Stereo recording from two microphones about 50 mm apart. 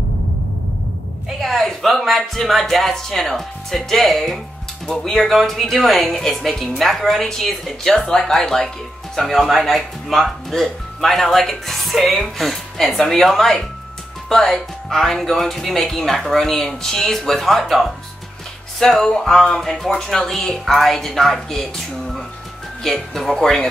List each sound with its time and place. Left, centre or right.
1.4 s speech: centre